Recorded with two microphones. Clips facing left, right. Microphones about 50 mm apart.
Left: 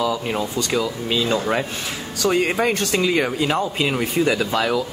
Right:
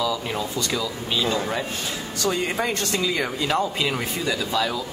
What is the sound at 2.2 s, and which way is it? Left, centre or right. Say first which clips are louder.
Speech: left 5 dB; left.